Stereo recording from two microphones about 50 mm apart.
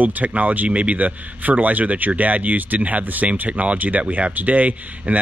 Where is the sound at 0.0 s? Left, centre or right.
Right.